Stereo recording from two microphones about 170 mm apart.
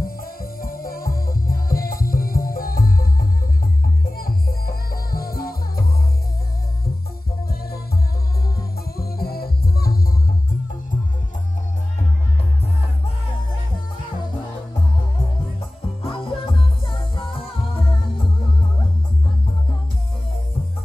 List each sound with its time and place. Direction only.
0.0 s music: 60° left (ahead or behind)
8.9 s music: 65° left (ahead or behind)
16.0 s music: 30° left (ahead or behind)